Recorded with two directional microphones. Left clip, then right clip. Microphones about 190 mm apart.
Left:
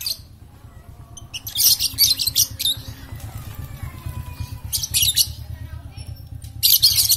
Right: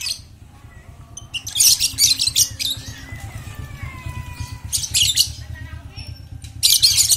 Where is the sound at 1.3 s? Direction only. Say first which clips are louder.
Right 3 dB; 20° left (ahead or behind).